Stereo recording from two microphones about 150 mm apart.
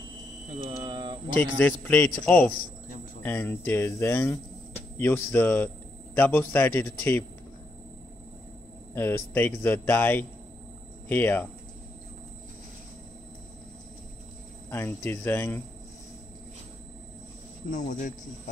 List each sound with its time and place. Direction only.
0.7 s a sound: 35° right (ahead or behind)
1.4 s a man's voice: 10° left (ahead or behind)
8.9 s a man's voice: 15° left (ahead or behind)
14.7 s a man's voice: 15° left (ahead or behind)
17.6 s speech: 55° left (ahead or behind)